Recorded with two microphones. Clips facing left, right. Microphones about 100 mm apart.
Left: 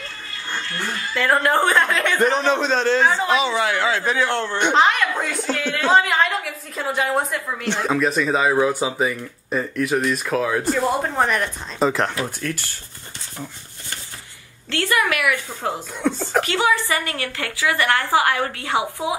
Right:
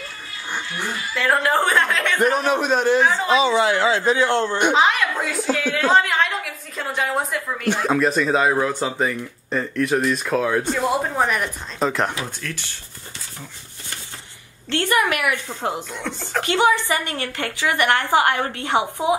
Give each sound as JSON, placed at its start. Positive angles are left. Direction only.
{"t": 0.0, "sound": "speech", "side_deg": -15}
{"t": 3.3, "sound": "a woman's voice", "side_deg": -25}
{"t": 4.6, "sound": "a woman's voice", "side_deg": -5}
{"t": 14.7, "sound": "a woman's voice", "side_deg": -20}
{"t": 16.0, "sound": "speech", "side_deg": 10}
{"t": 16.4, "sound": "a woman's voice", "side_deg": -20}